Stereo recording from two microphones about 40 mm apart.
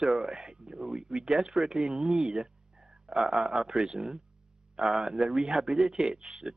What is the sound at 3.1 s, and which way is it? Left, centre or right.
Speech, centre.